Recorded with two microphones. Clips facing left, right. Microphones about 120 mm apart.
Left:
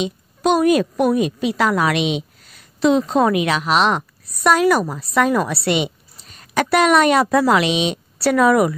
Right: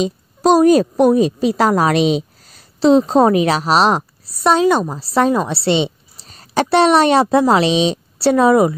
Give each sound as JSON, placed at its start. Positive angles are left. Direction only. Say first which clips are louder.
{"t": 0.0, "sound": "a woman's voice", "louder": "right 4 dB", "side_deg": -35}